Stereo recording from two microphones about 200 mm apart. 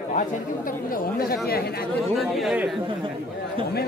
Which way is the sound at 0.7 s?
45° left (ahead or behind).